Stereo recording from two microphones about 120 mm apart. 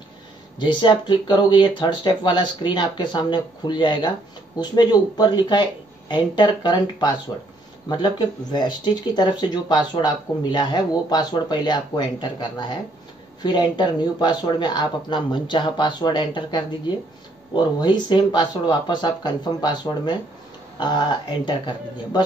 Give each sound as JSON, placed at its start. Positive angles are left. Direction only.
{"t": 0.6, "sound": "speech", "side_deg": 40}